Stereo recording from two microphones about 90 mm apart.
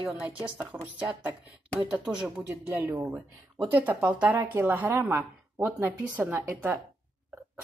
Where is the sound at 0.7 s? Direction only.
25° right (ahead or behind).